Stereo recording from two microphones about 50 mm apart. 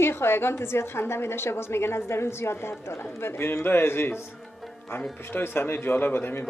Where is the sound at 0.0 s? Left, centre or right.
Left.